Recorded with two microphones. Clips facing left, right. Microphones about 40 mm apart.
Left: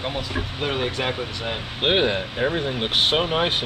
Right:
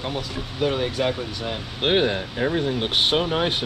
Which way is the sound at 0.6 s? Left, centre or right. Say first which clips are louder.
Right 3 dB; left.